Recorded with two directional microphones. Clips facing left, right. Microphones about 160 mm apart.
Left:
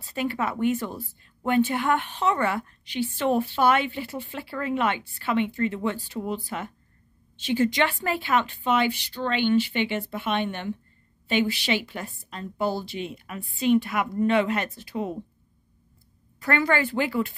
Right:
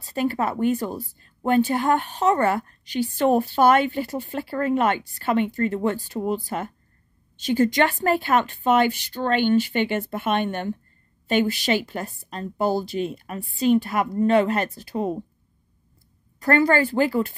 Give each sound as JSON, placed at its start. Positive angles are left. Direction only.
{"t": 0.0, "sound": "a woman's voice", "side_deg": -40}
{"t": 16.3, "sound": "a woman's voice", "side_deg": -40}